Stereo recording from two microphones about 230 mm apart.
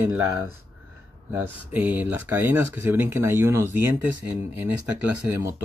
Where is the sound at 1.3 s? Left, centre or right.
Centre.